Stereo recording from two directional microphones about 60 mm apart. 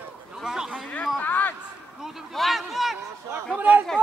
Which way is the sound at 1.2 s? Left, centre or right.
Left.